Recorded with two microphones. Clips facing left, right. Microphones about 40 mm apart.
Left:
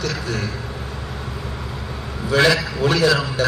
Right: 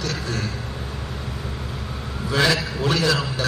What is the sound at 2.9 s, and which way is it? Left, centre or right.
Speech, left.